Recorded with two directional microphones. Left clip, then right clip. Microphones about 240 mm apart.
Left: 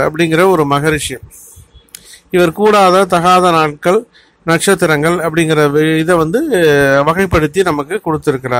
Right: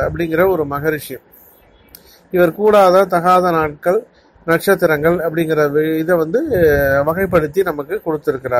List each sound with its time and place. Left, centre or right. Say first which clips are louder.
0.0 s speech: left 4 dB; left